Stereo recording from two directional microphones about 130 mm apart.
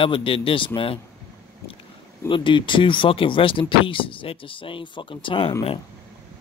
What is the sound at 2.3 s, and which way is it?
Speech, 40° left (ahead or behind).